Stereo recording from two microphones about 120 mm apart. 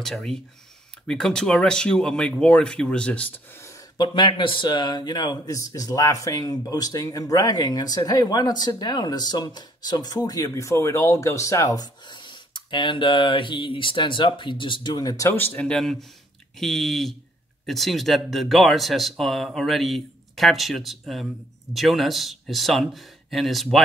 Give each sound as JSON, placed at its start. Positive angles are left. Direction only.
{"t": 0.0, "sound": "speech", "side_deg": 5}
{"t": 4.0, "sound": "speech", "side_deg": 40}
{"t": 15.3, "sound": "speech", "side_deg": 15}